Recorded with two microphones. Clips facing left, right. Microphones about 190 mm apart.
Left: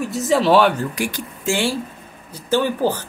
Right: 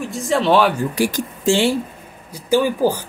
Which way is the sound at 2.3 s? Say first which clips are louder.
Right 2 dB; 10° right (ahead or behind).